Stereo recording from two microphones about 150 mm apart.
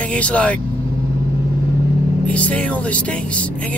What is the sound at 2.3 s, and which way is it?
Speech, 10° left (ahead or behind).